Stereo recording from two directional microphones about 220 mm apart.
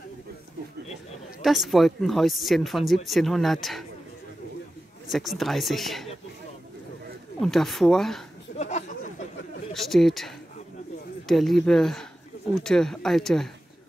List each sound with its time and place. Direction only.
1.4 s speech: centre (ahead or behind)
5.1 s speech: centre (ahead or behind)
7.3 s speech: centre (ahead or behind)
8.5 s a sound: 30° left (ahead or behind)
9.8 s speech: centre (ahead or behind)